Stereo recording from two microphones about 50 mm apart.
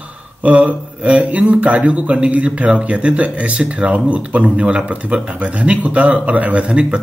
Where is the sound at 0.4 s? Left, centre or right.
Right.